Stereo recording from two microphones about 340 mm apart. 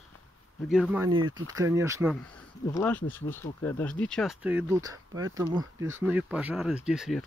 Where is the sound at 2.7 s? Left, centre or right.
Centre.